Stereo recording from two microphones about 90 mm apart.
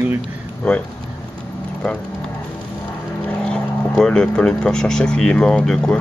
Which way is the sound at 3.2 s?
15° left (ahead or behind).